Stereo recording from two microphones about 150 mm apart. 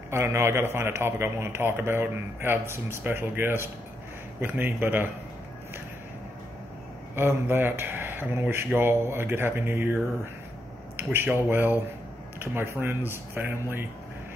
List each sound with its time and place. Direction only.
0.1 s a man's voice: 15° right (ahead or behind)
7.2 s a man's voice: 15° right (ahead or behind)
11.0 s a man's voice: 15° right (ahead or behind)